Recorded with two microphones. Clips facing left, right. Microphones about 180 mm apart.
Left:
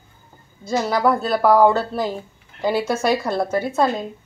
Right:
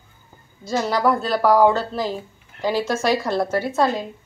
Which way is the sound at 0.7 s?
5° left (ahead or behind).